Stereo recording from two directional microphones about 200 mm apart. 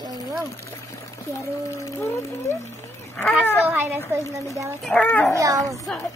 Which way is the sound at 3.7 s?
10° right (ahead or behind).